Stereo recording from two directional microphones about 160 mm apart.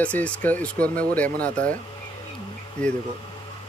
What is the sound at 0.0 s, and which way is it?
Speech, 10° left (ahead or behind).